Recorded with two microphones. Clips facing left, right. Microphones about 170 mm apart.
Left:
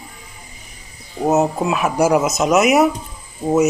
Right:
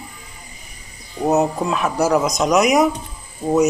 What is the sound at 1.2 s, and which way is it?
Speech, 5° left (ahead or behind).